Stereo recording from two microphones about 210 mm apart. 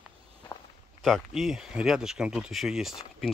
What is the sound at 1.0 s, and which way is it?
Speech, centre (ahead or behind).